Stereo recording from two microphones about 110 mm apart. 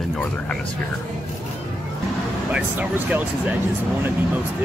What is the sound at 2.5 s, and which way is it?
Speech, 15° right (ahead or behind).